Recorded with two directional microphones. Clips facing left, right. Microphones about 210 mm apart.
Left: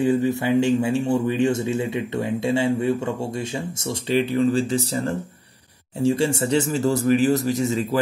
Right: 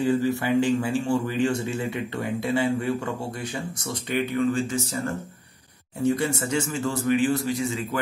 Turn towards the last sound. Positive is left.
turn(degrees=40)  # may be behind; listen again after turning